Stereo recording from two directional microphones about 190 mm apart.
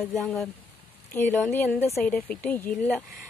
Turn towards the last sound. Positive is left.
turn(degrees=10)  # may be behind; listen again after turning